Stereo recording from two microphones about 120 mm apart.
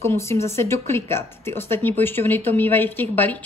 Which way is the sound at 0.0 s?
20° left (ahead or behind).